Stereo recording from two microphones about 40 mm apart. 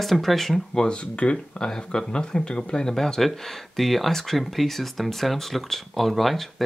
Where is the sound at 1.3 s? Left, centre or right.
Centre.